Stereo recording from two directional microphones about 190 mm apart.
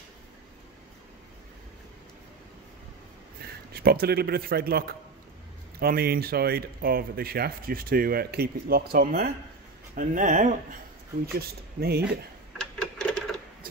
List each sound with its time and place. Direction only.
3.7 s speech: 55° right (ahead or behind)
11.3 s speech: 55° right (ahead or behind)
12.5 s a sound: 5° left (ahead or behind)